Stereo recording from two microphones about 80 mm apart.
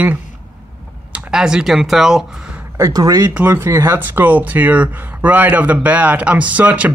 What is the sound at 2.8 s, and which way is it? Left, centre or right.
Speech, right.